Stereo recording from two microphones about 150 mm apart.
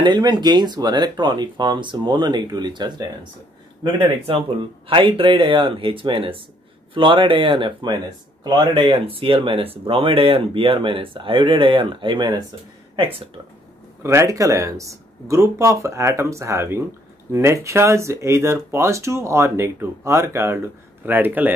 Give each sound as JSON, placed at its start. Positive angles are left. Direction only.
{"t": 0.0, "sound": "speech", "side_deg": -30}
{"t": 14.0, "sound": "speech", "side_deg": -20}